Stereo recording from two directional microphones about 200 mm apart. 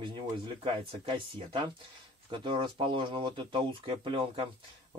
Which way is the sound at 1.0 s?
25° right (ahead or behind).